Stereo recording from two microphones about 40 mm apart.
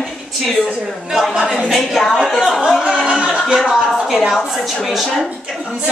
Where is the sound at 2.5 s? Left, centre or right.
Centre.